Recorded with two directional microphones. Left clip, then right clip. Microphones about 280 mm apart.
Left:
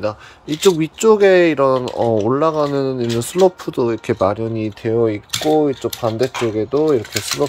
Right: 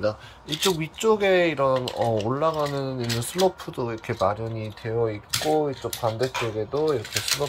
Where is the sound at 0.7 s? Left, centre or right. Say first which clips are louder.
Left 9 dB; left.